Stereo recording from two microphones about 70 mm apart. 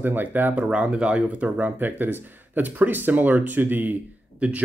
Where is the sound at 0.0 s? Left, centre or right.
Right.